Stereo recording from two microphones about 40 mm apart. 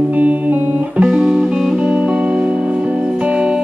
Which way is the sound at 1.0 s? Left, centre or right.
Right.